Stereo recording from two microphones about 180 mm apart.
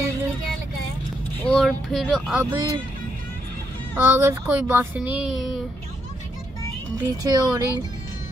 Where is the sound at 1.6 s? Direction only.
Centre (ahead or behind).